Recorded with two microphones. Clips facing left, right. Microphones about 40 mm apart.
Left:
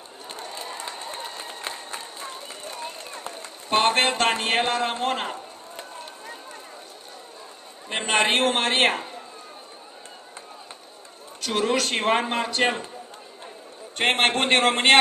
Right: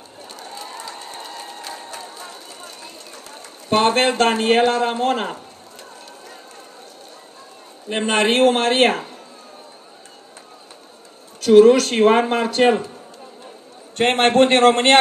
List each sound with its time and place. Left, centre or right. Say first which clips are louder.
0.3 s a sound: even; left
0.9 s a sound: even; centre
1.6 s run: right 1 dB; left
3.7 s a man's voice: right 4 dB; centre
7.9 s speech: right 4 dB; centre
11.4 s speech: right 13 dB; centre
13.9 s speech: right 7 dB; centre